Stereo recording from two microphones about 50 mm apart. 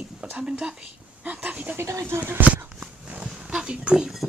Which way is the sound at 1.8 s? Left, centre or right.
Right.